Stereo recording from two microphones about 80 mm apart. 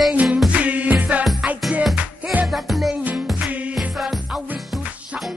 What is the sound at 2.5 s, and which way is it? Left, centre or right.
Music, centre.